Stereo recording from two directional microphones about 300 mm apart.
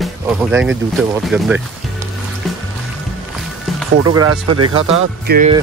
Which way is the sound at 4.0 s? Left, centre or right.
Right.